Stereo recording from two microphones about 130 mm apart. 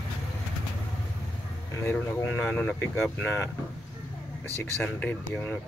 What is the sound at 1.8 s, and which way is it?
Speech, 15° left (ahead or behind).